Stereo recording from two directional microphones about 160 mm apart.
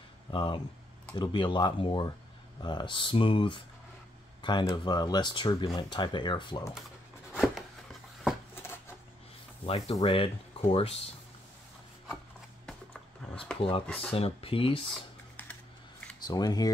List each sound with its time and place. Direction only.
0.3 s speech: 30° left (ahead or behind)
7.3 s a sound: centre (ahead or behind)
9.7 s speech: 35° left (ahead or behind)
13.2 s a sound: 5° left (ahead or behind)
13.6 s speech: 35° left (ahead or behind)
13.8 s speech: 10° left (ahead or behind)
14.1 s speech: 35° left (ahead or behind)
16.2 s speech: 25° left (ahead or behind)